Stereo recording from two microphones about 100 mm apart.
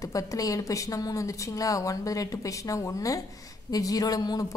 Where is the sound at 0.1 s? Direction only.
35° left (ahead or behind).